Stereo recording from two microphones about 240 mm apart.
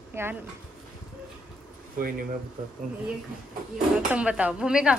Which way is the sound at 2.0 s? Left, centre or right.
Right.